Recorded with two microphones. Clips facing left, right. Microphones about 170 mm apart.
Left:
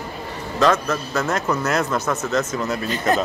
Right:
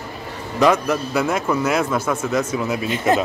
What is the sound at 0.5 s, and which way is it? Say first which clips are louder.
Speech: right 2 dB; 15° right (ahead or behind).